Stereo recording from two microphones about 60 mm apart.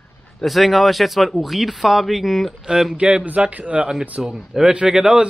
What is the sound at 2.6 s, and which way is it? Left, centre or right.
A man's voice, centre.